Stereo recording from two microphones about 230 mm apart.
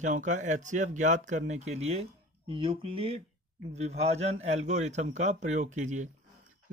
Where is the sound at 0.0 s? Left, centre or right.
Right.